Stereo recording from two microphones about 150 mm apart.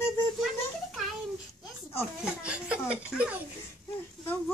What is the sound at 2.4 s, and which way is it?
Speech, 10° right (ahead or behind).